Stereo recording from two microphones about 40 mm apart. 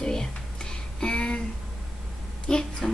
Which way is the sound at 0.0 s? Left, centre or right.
Centre.